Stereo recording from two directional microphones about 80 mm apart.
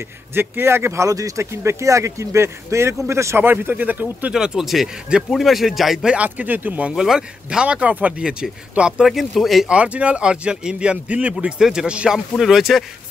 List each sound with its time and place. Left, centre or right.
0.3 s speech: right
4.3 s a man's voice: centre
6.1 s speech: right
6.9 s speech: centre
9.7 s speech: centre